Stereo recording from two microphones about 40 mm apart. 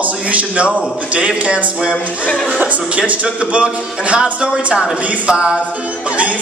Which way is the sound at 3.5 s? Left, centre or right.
Right.